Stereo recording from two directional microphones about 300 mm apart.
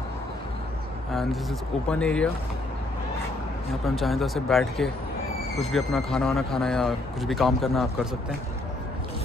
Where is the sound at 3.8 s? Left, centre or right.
Centre.